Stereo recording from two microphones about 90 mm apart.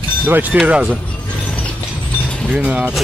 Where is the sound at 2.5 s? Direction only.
15° right (ahead or behind).